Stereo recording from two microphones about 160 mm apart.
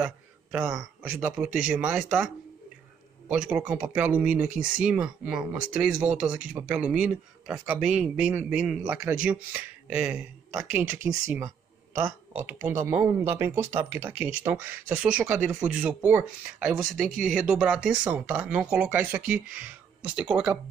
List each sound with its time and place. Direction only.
0.0 s a sound: 5° right (ahead or behind)
1.4 s speech: 5° right (ahead or behind)
4.5 s speech: 60° right (ahead or behind)
4.8 s a man's voice: 5° right (ahead or behind)